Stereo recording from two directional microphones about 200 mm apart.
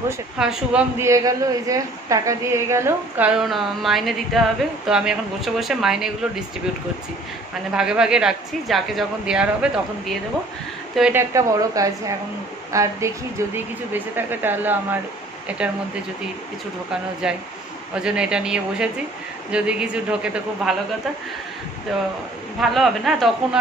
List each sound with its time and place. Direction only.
0.4 s a woman's voice: 5° right (ahead or behind)
7.7 s a woman's voice: 5° right (ahead or behind)
13.9 s speech: 10° right (ahead or behind)
16.9 s a woman's voice: 5° right (ahead or behind)
22.6 s a woman's voice: centre (ahead or behind)